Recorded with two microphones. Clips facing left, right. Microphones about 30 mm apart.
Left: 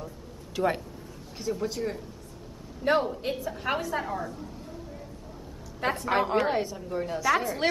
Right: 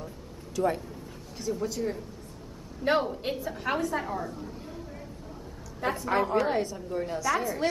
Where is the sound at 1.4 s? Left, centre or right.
Centre.